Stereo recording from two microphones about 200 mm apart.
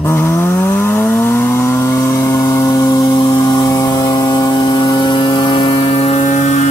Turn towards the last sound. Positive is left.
turn(degrees=35)  # may be behind; listen again after turning